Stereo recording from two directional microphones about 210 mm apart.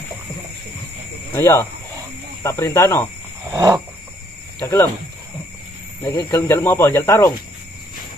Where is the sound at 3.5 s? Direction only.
20° right (ahead or behind).